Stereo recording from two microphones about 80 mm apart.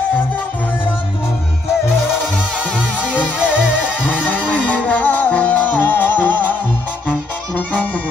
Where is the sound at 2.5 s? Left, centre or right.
Centre.